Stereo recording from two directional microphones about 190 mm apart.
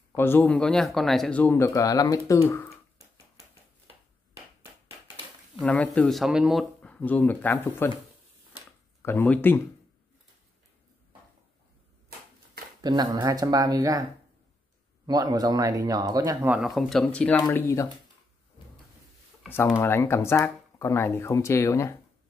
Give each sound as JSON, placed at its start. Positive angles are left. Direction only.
{"t": 0.1, "sound": "speech", "side_deg": 10}
{"t": 5.6, "sound": "speech", "side_deg": 5}
{"t": 9.0, "sound": "speech", "side_deg": 10}
{"t": 12.8, "sound": "speech", "side_deg": -20}
{"t": 15.0, "sound": "speech", "side_deg": -20}
{"t": 16.3, "sound": "speech", "side_deg": -5}
{"t": 19.8, "sound": "speech", "side_deg": 15}